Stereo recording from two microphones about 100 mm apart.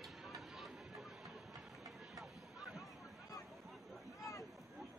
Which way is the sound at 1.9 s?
Centre (ahead or behind).